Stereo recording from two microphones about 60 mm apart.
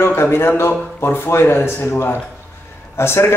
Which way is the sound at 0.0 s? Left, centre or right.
Left.